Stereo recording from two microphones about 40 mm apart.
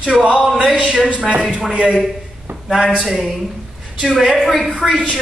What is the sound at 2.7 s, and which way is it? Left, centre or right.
A man's voice, centre.